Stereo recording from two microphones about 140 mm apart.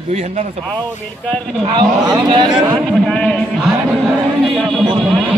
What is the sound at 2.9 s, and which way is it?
A man's voice, 5° left (ahead or behind).